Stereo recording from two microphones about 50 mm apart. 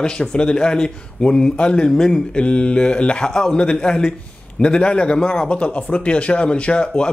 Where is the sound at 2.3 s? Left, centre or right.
Left.